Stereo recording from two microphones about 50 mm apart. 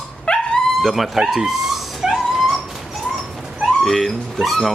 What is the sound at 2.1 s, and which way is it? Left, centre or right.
Dog, centre.